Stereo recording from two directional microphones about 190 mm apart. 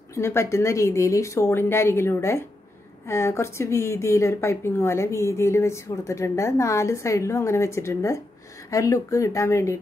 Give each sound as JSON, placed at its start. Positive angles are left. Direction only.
{"t": 0.1, "sound": "speech", "side_deg": 15}